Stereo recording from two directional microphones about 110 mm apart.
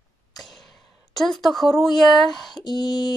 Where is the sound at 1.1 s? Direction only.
Centre (ahead or behind).